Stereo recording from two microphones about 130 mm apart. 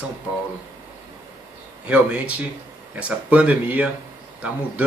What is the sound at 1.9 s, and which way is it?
Speech, 10° right (ahead or behind).